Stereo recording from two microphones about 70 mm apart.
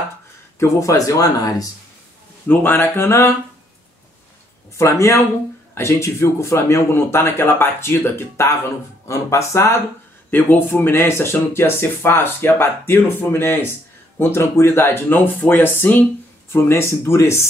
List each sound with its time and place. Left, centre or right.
0.6 s speech: left
2.4 s speech: left
3.1 s speech: left
4.7 s speech: left
10.3 s speech: left